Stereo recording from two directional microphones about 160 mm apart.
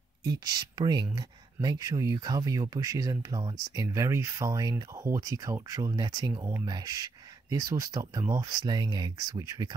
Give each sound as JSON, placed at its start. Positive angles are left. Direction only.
{"t": 0.2, "sound": "speech", "side_deg": -25}